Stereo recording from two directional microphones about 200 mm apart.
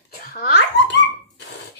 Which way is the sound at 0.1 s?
50° left (ahead or behind).